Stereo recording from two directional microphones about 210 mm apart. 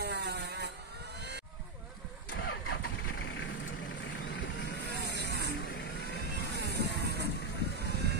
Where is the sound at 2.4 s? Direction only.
90° left.